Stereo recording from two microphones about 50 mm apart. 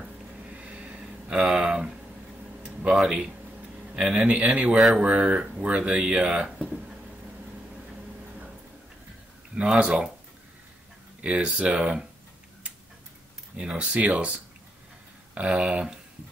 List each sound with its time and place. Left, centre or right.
0.5 s a sound: right
2.6 s tick-tock: right
3.0 s speech: centre; by 4.7 s right
4.7 s speech: centre
5.0 s speech: right
9.6 s speech: right
11.1 s speech: right
13.6 s speech: centre
15.4 s speech: right